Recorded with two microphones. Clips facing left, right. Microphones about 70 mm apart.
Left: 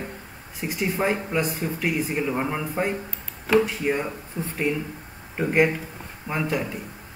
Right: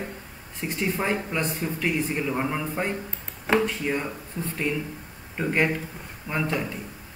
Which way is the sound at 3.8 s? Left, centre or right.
Centre.